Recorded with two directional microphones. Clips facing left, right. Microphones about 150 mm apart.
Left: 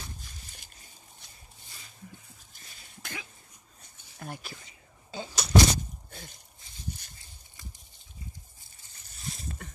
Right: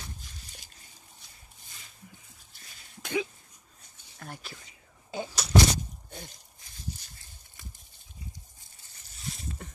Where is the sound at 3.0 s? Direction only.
20° right (ahead or behind).